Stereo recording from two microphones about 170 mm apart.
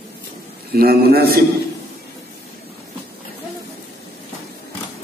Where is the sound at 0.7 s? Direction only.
65° right (ahead or behind).